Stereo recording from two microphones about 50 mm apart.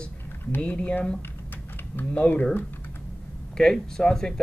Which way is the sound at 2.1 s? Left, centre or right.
Left.